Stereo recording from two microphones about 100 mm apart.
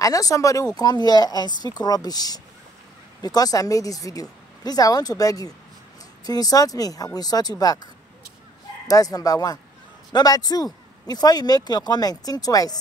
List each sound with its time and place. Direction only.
0.0 s speech: 35° left (ahead or behind)
8.8 s speech: 35° left (ahead or behind)